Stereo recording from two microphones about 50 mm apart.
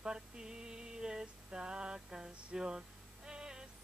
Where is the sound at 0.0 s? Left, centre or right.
Centre.